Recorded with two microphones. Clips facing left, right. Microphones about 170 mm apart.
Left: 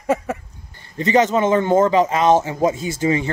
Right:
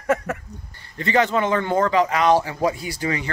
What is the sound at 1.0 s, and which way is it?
Speech, 20° left (ahead or behind).